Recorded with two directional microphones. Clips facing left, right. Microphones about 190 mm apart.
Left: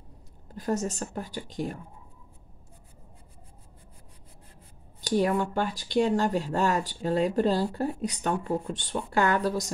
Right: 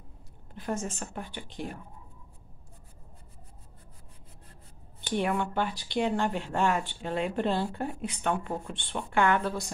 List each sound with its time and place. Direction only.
0.5 s speech: 40° left (ahead or behind)
5.0 s speech: 40° left (ahead or behind)